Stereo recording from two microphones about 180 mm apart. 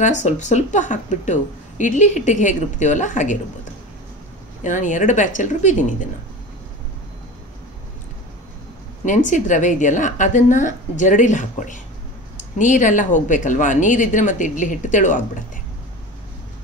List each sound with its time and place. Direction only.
0.2 s a woman's voice: 40° left (ahead or behind)
4.6 s a woman's voice: 45° left (ahead or behind)
9.0 s a woman's voice: 45° left (ahead or behind)